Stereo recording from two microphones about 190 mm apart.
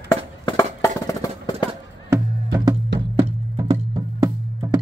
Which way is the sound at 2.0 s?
20° right (ahead or behind).